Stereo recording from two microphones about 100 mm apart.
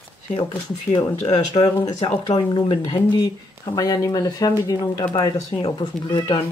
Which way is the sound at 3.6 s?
40° left (ahead or behind).